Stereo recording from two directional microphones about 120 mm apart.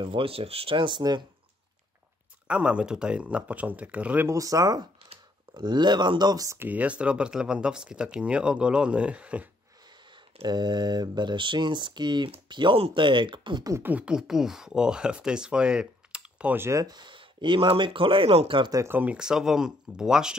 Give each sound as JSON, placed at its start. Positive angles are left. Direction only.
{"t": 0.0, "sound": "speech", "side_deg": -45}
{"t": 2.4, "sound": "speech", "side_deg": -10}
{"t": 4.3, "sound": "speech", "side_deg": -30}
{"t": 6.7, "sound": "speech", "side_deg": -10}
{"t": 10.4, "sound": "speech", "side_deg": -35}
{"t": 13.8, "sound": "speech", "side_deg": -10}
{"t": 16.8, "sound": "speech", "side_deg": -40}
{"t": 18.9, "sound": "speech", "side_deg": -15}